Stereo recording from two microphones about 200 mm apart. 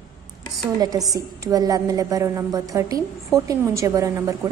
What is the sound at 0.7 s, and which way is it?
A woman's voice, 20° right (ahead or behind).